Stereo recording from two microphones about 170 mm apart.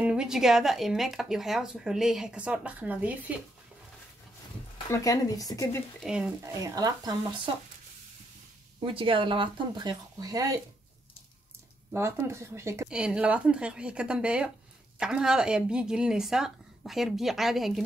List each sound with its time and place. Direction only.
0.0 s speech: 5° right (ahead or behind)
4.9 s speech: 20° left (ahead or behind)
5.9 s speech: 5° right (ahead or behind)
6.4 s speech: 20° right (ahead or behind)
8.7 s speech: 30° right (ahead or behind)
11.9 s speech: 15° right (ahead or behind)